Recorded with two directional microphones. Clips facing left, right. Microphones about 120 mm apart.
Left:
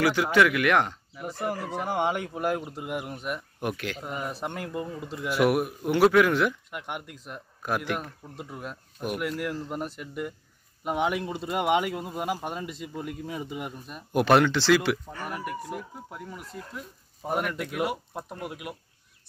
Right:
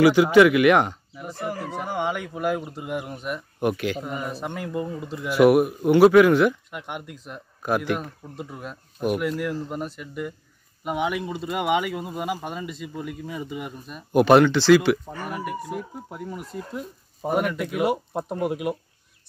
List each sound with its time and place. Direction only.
0.0 s speech: 10° right (ahead or behind)
1.1 s speech: 10° left (ahead or behind)
2.0 s speech: 35° left (ahead or behind)
2.3 s speech: 20° left (ahead or behind)
2.6 s speech: 10° left (ahead or behind)
3.7 s speech: 5° right (ahead or behind)
4.0 s speech: 10° left (ahead or behind)
4.6 s speech: 10° right (ahead or behind)
5.1 s speech: centre (ahead or behind)
7.6 s speech: 5° right (ahead or behind)
9.7 s speech: 15° left (ahead or behind)
10.8 s speech: 10° right (ahead or behind)
16.7 s speech: 20° right (ahead or behind)